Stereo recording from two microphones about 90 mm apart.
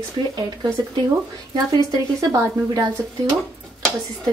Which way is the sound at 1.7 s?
40° right (ahead or behind).